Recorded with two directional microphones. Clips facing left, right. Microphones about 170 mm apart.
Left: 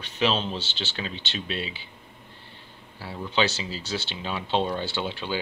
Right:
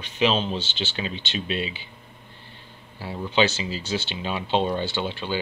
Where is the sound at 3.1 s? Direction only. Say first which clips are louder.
Right 3 dB; 5° right (ahead or behind).